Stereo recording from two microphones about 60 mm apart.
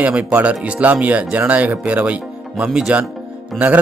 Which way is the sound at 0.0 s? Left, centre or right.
Right.